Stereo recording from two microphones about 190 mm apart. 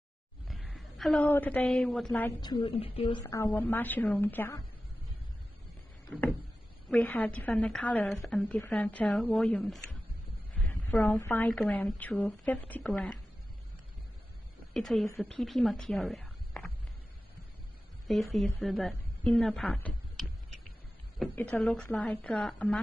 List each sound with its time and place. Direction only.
0.5 s a woman's voice: centre (ahead or behind)
2.2 s speech: 20° left (ahead or behind)
2.6 s speech: 30° left (ahead or behind)
3.3 s a woman's voice: 15° left (ahead or behind)
6.0 s a sound: 10° left (ahead or behind)
6.9 s a woman's voice: 10° left (ahead or behind)
10.5 s a sound: 10° left (ahead or behind)
11.1 s a woman's voice: 10° left (ahead or behind)
14.7 s speech: centre (ahead or behind)
18.0 s a woman's voice: centre (ahead or behind)